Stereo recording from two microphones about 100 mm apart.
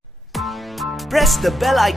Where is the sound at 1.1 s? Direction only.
Centre (ahead or behind).